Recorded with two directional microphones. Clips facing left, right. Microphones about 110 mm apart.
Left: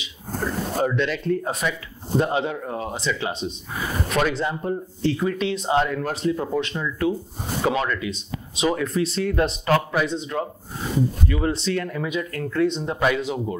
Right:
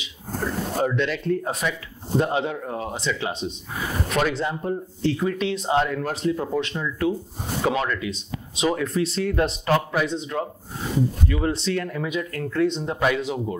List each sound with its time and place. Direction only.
0.0 s speech: 25° left (ahead or behind)
6.6 s speech: 20° left (ahead or behind)